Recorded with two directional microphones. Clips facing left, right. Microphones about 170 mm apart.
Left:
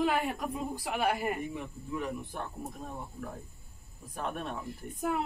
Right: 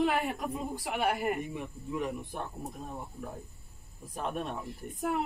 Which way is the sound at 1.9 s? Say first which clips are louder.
Right 1 dB; 15° right (ahead or behind).